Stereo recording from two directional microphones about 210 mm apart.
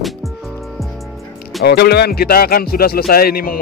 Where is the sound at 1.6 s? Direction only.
50° left (ahead or behind).